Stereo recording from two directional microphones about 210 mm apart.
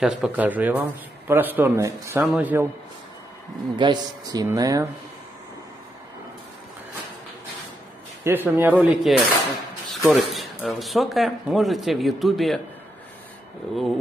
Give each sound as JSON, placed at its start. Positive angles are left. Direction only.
{"t": 0.0, "sound": "speech", "side_deg": -5}
{"t": 3.7, "sound": "speech", "side_deg": -20}
{"t": 8.2, "sound": "speech", "side_deg": -10}